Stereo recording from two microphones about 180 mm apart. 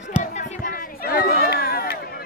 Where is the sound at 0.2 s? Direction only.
40° left (ahead or behind).